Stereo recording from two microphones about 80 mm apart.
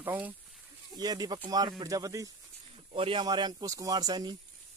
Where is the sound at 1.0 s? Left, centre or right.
Right.